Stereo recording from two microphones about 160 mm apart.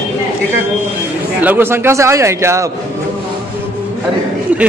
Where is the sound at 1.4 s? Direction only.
10° right (ahead or behind).